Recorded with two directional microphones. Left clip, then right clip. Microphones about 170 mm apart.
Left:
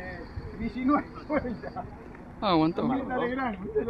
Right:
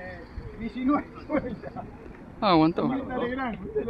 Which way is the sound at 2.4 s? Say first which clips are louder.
Right 3 dB; 30° right (ahead or behind).